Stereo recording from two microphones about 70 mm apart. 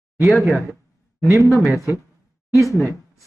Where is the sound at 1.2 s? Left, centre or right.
Left.